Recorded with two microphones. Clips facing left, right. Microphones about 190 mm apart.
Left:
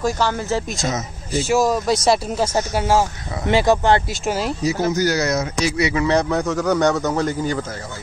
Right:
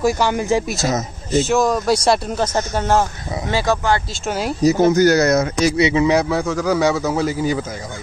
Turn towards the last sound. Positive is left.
turn(degrees=-10)  # may be behind; listen again after turning